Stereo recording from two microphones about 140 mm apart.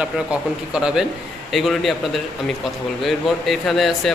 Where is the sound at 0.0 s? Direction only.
5° right (ahead or behind).